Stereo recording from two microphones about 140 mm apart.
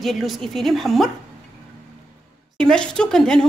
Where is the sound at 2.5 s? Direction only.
5° left (ahead or behind).